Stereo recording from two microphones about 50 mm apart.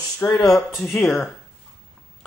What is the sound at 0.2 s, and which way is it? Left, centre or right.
Speech, left.